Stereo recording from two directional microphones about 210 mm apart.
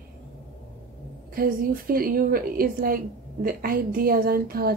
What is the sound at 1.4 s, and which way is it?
A woman's voice, 45° right (ahead or behind).